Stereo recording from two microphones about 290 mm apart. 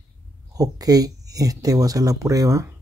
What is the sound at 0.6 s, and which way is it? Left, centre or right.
Speech, centre.